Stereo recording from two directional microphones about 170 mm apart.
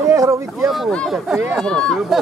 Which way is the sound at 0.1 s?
20° right (ahead or behind).